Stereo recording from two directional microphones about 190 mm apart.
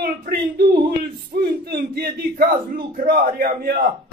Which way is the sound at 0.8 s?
50° right (ahead or behind).